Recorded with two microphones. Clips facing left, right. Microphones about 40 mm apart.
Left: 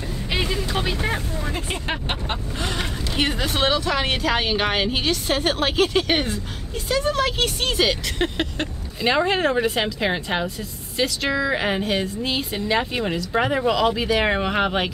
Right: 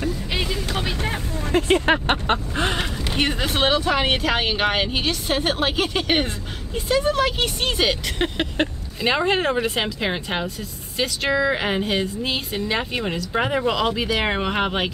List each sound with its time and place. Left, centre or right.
0.3 s vehicle: centre
1.5 s speech: right
3.2 s a woman's voice: centre